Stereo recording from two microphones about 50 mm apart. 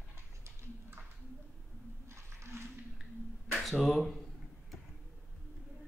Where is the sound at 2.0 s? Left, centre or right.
Right.